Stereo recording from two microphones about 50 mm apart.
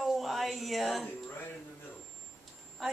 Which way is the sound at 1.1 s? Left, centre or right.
Left.